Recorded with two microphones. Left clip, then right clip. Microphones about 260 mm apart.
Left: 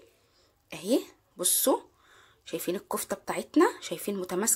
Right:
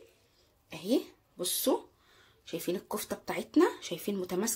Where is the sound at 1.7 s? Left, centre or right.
Left.